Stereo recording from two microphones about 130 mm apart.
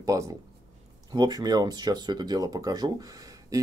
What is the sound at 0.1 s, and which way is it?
Speech, 25° right (ahead or behind).